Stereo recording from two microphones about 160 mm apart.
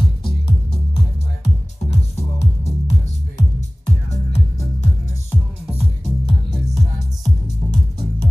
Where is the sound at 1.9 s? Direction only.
40° left (ahead or behind).